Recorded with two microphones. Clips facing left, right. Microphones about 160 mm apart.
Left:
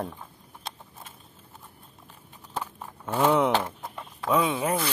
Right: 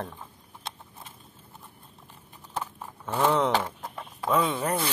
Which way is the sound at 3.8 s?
10° right (ahead or behind).